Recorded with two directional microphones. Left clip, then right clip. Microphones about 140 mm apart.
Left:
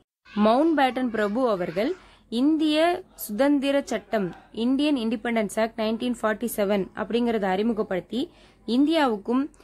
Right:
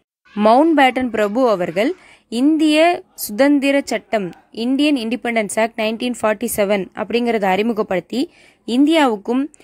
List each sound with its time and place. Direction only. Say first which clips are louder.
0.7 s a woman's voice: right 8 dB; 40° right (ahead or behind)